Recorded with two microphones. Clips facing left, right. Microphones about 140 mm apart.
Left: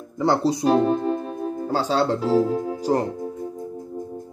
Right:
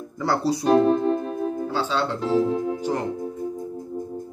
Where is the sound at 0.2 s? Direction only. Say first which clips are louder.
Left 3 dB; 20° left (ahead or behind).